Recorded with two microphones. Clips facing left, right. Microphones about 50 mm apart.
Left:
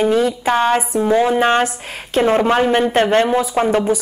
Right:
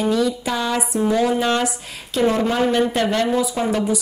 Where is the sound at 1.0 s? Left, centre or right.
Left.